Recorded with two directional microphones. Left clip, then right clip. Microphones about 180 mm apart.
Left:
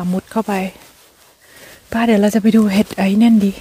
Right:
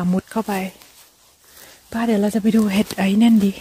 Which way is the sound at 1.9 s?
25° left (ahead or behind).